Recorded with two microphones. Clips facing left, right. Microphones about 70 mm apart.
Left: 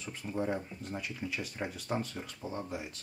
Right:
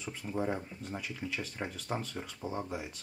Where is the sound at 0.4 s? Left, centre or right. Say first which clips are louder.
Left 1 dB; centre.